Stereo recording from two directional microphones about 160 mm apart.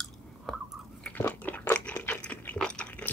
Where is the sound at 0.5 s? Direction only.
Centre (ahead or behind).